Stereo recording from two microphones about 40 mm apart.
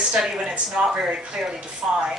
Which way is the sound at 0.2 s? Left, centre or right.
Right.